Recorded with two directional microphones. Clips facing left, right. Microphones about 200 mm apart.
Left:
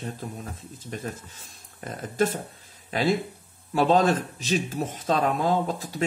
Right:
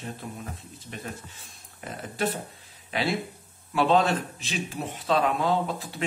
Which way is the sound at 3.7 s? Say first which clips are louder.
Left 2 dB; 40° left (ahead or behind).